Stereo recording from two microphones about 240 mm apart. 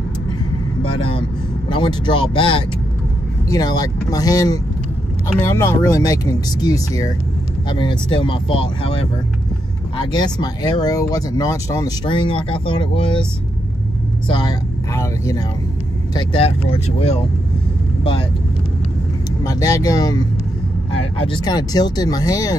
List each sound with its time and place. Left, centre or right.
1.7 s speech: centre
10.1 s speech: centre
14.2 s speech: centre
19.4 s speech: centre
21.3 s speech: centre